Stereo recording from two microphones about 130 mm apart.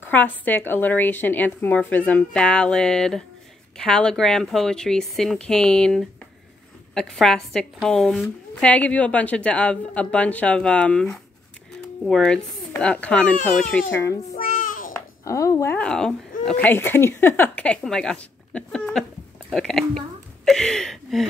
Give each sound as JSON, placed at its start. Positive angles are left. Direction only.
{"t": 0.0, "sound": "speech", "side_deg": 15}
{"t": 13.8, "sound": "speech", "side_deg": 20}
{"t": 14.4, "sound": "a sound", "side_deg": 90}
{"t": 15.2, "sound": "speech", "side_deg": 25}
{"t": 15.8, "sound": "speech", "side_deg": 5}